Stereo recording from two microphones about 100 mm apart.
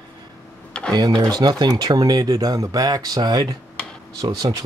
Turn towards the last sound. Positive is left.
turn(degrees=-40)  # may be behind; listen again after turning